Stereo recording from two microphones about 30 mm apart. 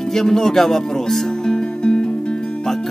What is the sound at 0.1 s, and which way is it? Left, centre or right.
Speech, centre.